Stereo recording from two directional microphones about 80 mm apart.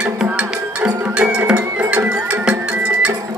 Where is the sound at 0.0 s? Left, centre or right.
Centre.